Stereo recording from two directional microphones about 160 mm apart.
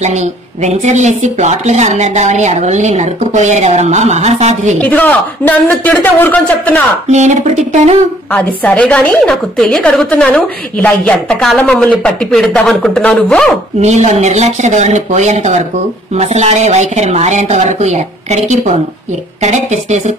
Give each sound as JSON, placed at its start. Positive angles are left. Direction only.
{"t": 0.0, "sound": "speech", "side_deg": -45}
{"t": 4.8, "sound": "a man's voice", "side_deg": 10}
{"t": 7.1, "sound": "speech", "side_deg": -45}
{"t": 8.3, "sound": "a woman's voice", "side_deg": 10}
{"t": 13.7, "sound": "speech", "side_deg": -45}